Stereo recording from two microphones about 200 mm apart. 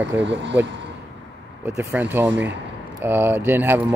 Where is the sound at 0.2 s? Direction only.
65° right (ahead or behind).